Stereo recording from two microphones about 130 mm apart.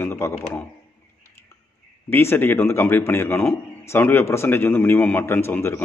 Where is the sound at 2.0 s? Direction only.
15° left (ahead or behind).